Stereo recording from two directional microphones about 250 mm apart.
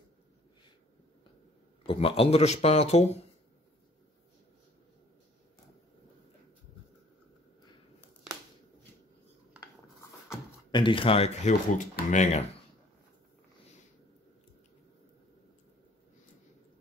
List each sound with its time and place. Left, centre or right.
1.9 s speech: left
10.3 s speech: centre